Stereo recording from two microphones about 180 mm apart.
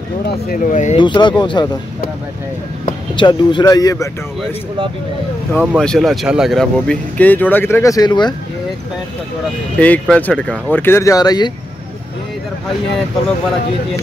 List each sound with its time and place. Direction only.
0.3 s speech: 50° left (ahead or behind)
0.9 s speech: 25° left (ahead or behind)
3.2 s speech: 25° left (ahead or behind)
5.5 s speech: 10° right (ahead or behind); by 8.4 s 25° left (ahead or behind)
9.8 s speech: 5° left (ahead or behind); by 11.5 s 20° left (ahead or behind)